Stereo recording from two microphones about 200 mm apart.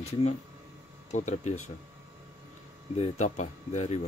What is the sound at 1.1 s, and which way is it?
Speech, 35° left (ahead or behind).